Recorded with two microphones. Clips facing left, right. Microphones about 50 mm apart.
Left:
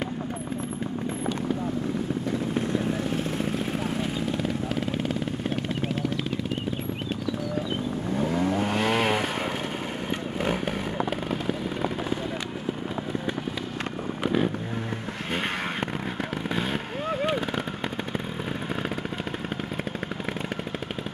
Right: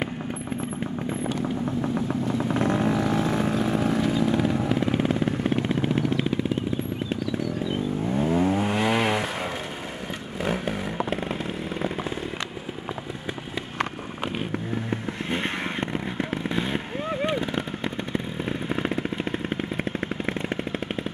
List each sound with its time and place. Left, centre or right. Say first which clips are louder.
2.6 s vehicle: right 4 dB; right
4.4 s vehicle: right 5 dB; right
8.2 s vehicle: right 3 dB; right
8.5 s chainsaw: right 1 dB; centre
10.4 s vehicle: right 1 dB; centre
16.4 s vehicle: left 1 dB; centre
16.7 s vehicle: even; centre
17.3 s a sound: even; centre